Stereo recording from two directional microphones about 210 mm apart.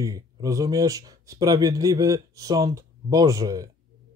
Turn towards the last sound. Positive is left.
turn(degrees=-15)  # may be behind; listen again after turning